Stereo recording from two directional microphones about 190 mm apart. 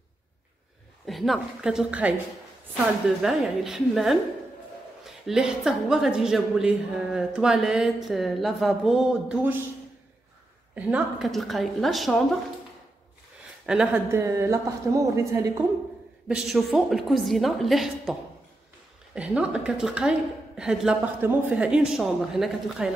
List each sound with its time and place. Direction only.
1.0 s a woman's voice: centre (ahead or behind)
3.2 s a woman's voice: 5° right (ahead or behind)
10.7 s a woman's voice: 5° right (ahead or behind)
13.7 s a woman's voice: 5° right (ahead or behind)
14.1 s speech: 15° right (ahead or behind)
16.3 s a woman's voice: centre (ahead or behind)
19.1 s a woman's voice: 5° right (ahead or behind)